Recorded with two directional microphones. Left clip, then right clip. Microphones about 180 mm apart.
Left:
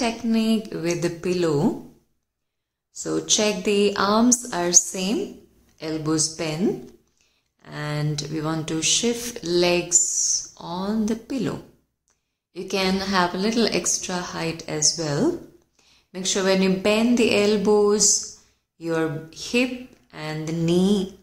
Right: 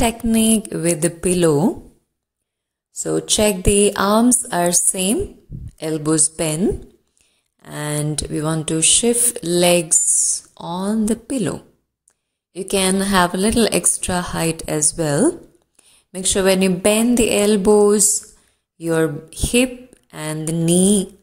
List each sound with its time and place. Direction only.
0.0 s a woman's voice: 45° right (ahead or behind)
3.0 s a woman's voice: 35° right (ahead or behind)
7.6 s speech: 45° right (ahead or behind)
12.5 s a woman's voice: 40° right (ahead or behind)